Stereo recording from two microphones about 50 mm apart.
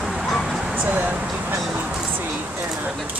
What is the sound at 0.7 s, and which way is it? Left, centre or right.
Speech, right.